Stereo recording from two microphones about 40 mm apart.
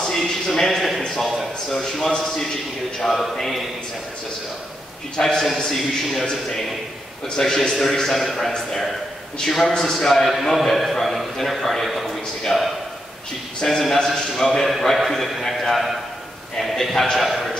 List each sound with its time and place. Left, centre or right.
0.0 s a sound: centre
2.0 s a man's voice: centre
5.2 s a man's voice: centre
7.2 s a man's voice: centre